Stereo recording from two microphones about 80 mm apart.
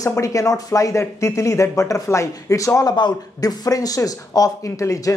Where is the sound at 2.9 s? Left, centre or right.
Left.